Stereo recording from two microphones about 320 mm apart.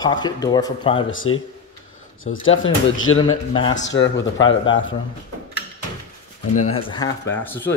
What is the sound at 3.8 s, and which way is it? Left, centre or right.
Speech, left.